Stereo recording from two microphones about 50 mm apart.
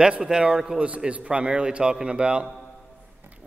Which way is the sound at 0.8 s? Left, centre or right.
Right.